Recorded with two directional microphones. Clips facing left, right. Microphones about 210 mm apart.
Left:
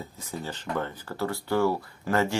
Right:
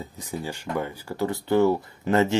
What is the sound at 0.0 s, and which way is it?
A man's voice, 15° right (ahead or behind).